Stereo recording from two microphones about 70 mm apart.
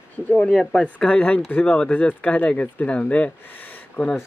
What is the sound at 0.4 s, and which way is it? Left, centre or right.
Speech, centre.